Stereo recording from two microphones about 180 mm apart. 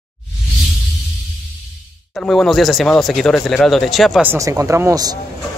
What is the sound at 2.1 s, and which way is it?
Speech, 5° left (ahead or behind).